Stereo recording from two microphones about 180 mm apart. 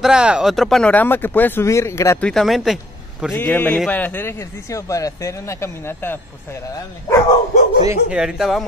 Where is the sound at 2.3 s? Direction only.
Centre (ahead or behind).